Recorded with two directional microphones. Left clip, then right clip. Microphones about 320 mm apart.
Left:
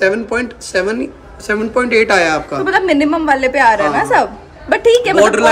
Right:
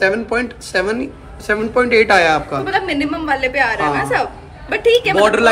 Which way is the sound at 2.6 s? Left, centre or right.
Left.